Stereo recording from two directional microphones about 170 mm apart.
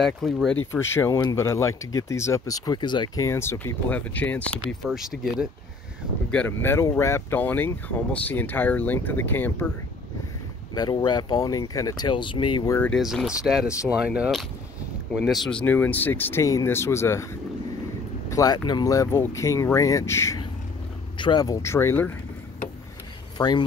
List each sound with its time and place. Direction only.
0.0 s speech: centre (ahead or behind)
0.7 s speech: 15° left (ahead or behind)
3.3 s speech: 15° left (ahead or behind)
4.8 s speech: 5° right (ahead or behind)
6.3 s speech: 10° left (ahead or behind)
10.7 s speech: 25° left (ahead or behind)
12.7 s speech: 10° left (ahead or behind)
13.0 s speech: centre (ahead or behind)
23.3 s speech: 25° left (ahead or behind)